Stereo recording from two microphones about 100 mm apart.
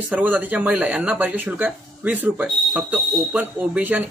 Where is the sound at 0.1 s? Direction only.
15° right (ahead or behind).